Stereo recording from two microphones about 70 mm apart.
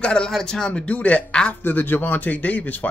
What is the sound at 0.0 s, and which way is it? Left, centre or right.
Speech, centre.